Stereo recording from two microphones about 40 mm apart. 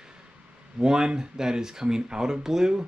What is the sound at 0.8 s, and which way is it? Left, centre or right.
Speech, centre.